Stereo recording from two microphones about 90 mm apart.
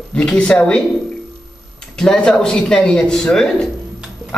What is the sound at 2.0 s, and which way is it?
Speech, 5° left (ahead or behind).